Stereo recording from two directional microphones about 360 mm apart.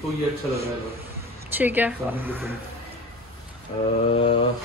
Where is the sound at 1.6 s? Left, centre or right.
Centre.